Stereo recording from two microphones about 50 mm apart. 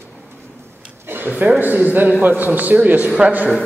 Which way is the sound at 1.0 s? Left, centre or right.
Right.